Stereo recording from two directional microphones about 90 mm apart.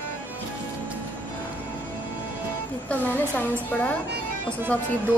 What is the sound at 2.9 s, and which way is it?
A woman's voice, 15° left (ahead or behind).